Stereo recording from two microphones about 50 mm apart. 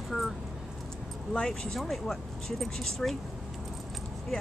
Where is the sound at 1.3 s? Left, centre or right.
Centre.